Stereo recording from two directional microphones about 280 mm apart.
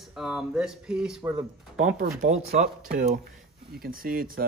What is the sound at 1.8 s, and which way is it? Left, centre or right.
Speech, right.